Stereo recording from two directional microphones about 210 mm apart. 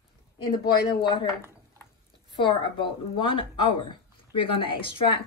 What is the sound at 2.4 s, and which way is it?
Speech, 25° left (ahead or behind).